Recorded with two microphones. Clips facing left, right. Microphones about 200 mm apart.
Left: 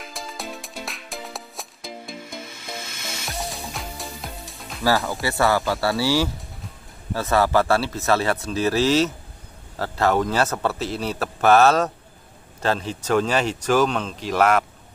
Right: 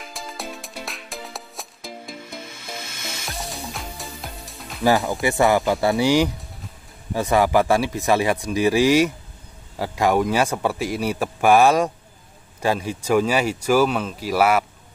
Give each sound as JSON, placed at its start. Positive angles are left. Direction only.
{"t": 0.1, "sound": "music", "side_deg": 0}
{"t": 3.3, "sound": "music", "side_deg": 0}
{"t": 4.8, "sound": "a man's voice", "side_deg": -15}